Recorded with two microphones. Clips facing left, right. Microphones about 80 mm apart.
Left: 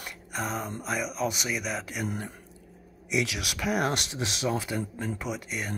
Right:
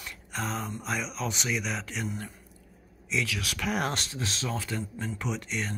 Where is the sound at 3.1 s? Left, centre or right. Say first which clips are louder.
Left 2 dB; centre.